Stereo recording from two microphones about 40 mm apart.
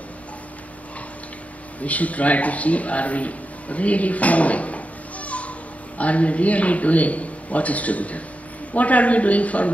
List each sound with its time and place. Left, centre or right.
1.8 s a man's voice: left